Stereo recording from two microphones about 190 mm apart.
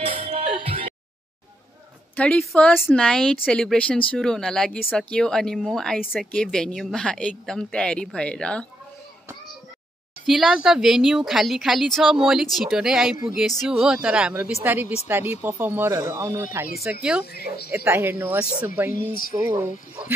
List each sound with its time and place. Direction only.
0.0 s music: 30° right (ahead or behind)
2.1 s speech: 5° left (ahead or behind)
10.2 s speech: centre (ahead or behind)
17.0 s speech: 5° right (ahead or behind)